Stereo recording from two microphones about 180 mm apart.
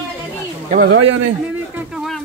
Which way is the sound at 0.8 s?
90° right.